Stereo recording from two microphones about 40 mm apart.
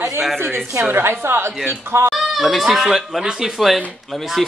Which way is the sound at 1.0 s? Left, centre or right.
Right.